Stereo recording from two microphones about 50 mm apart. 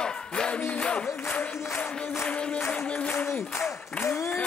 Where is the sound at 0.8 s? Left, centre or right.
Left.